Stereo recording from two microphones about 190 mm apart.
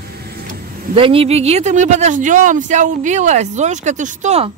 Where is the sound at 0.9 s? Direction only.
30° right (ahead or behind).